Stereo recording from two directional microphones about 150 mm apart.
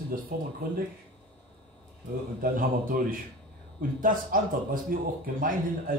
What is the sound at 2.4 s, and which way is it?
Speech, 70° right (ahead or behind).